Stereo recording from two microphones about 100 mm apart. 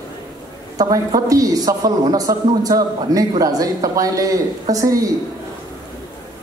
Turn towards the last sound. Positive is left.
turn(degrees=-35)  # may be behind; listen again after turning